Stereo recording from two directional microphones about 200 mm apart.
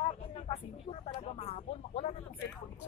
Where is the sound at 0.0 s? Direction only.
35° left (ahead or behind).